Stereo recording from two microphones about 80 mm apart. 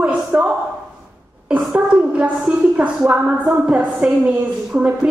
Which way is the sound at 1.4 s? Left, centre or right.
Centre.